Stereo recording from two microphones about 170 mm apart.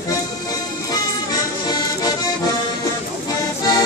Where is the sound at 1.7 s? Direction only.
25° left (ahead or behind).